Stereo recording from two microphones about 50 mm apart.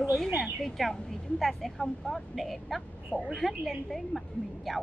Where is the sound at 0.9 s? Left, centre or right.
Centre.